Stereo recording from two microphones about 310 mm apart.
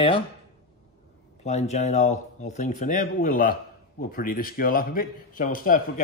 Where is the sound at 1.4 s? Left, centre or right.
Left.